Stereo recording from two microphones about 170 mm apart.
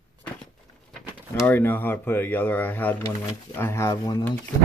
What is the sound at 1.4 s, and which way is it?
Speech, 10° left (ahead or behind).